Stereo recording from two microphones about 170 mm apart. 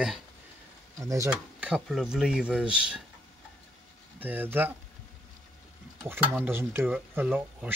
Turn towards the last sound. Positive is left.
turn(degrees=-10)  # may be behind; listen again after turning